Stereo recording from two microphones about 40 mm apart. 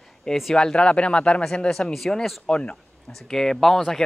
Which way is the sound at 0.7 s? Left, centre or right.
Left.